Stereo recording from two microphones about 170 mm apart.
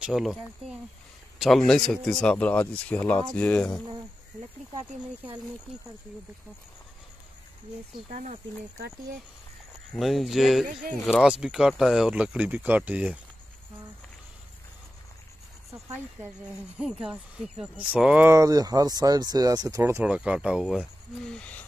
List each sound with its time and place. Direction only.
0.0 s speech: centre (ahead or behind)
3.3 s insect: 10° left (ahead or behind)
8.1 s speech: 45° right (ahead or behind)
9.9 s speech: centre (ahead or behind)
15.7 s speech: 15° right (ahead or behind); by 21.6 s 5° left (ahead or behind)